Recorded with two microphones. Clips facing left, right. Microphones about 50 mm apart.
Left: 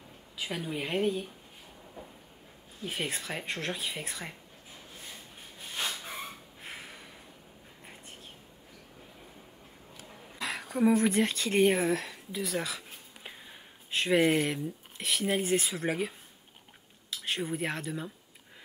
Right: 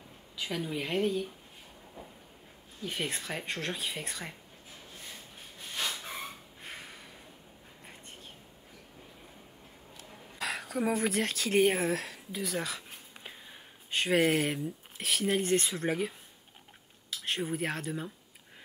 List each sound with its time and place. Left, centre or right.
0.4 s speech: centre
2.8 s speech: centre
5.1 s a sound: centre
10.0 s speech: centre
17.1 s speech: centre